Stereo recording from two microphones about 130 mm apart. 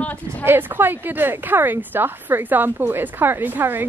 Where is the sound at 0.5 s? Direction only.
15° right (ahead or behind).